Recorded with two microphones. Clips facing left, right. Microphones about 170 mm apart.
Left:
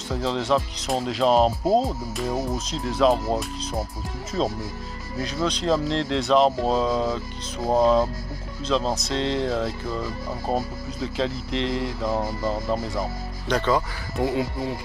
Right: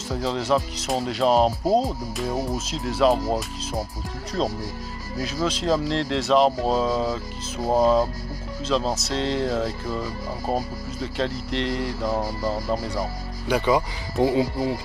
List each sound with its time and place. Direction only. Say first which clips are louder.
0.1 s speech: even; centre (ahead or behind)
5.2 s speech: even; centre (ahead or behind)
13.5 s speech: right 1 dB; 10° right (ahead or behind)
14.2 s speech: right 4 dB; 25° right (ahead or behind)